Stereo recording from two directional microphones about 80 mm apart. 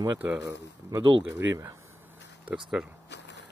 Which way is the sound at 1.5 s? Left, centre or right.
Right.